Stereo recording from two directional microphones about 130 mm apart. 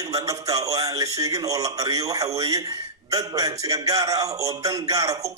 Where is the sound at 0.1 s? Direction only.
25° right (ahead or behind).